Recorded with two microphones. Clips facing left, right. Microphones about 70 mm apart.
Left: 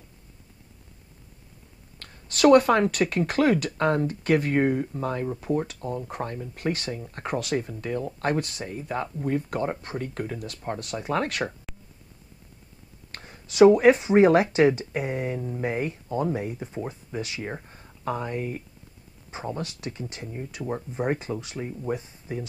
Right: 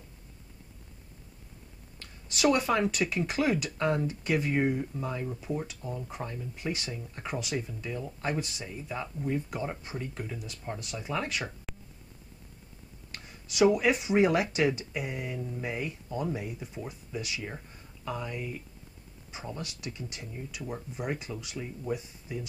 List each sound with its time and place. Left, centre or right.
2.0 s speech: left
13.1 s speech: left